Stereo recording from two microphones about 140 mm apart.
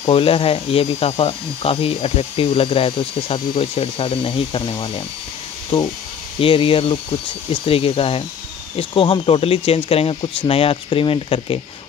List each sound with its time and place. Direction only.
0.0 s speech: 40° left (ahead or behind)
6.4 s speech: 40° left (ahead or behind)